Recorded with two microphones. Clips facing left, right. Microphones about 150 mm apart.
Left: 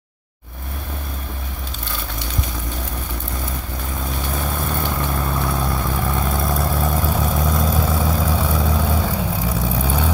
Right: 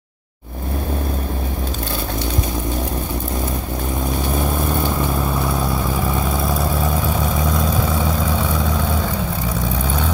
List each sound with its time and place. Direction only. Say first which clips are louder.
5.1 s vehicle: right 2 dB; 10° right (ahead or behind)